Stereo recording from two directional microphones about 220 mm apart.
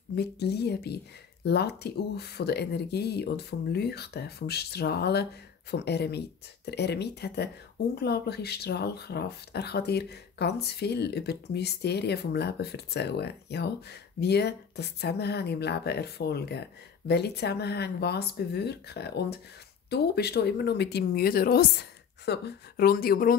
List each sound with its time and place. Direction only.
0.1 s speech: 50° left (ahead or behind)